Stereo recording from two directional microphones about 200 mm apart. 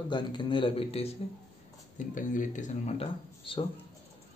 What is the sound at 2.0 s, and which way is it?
Speech, 40° left (ahead or behind).